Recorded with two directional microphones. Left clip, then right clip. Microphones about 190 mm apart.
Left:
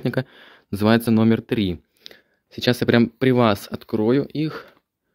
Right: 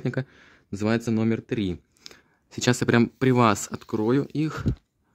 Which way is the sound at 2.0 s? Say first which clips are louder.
Left 3 dB; 35° right (ahead or behind).